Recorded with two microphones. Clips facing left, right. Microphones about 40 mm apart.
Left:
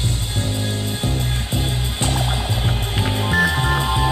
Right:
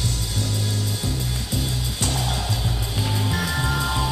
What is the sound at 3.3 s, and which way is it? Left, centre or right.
Music, left.